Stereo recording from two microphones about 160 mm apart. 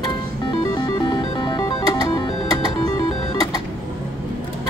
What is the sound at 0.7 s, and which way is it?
Music, 25° left (ahead or behind).